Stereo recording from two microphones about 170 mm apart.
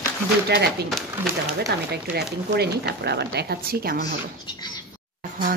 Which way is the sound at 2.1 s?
70° right (ahead or behind).